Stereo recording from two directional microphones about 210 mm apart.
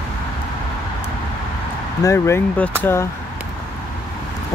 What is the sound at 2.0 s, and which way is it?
Speech, 15° left (ahead or behind).